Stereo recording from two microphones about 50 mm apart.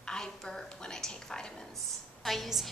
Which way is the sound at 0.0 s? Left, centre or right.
Centre.